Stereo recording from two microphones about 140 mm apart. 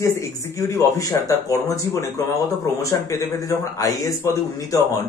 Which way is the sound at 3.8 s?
25° left (ahead or behind).